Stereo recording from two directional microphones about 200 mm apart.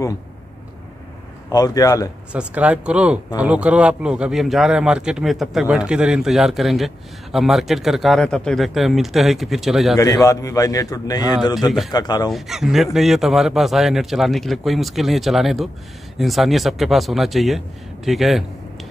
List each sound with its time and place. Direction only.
1.5 s a man's voice: 20° left (ahead or behind)
2.3 s speech: 5° right (ahead or behind)
9.9 s a man's voice: 15° left (ahead or behind)
12.3 s speech: centre (ahead or behind)